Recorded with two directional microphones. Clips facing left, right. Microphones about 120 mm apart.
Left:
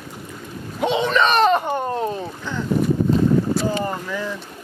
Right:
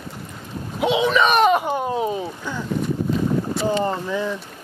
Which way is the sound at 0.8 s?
5° right (ahead or behind).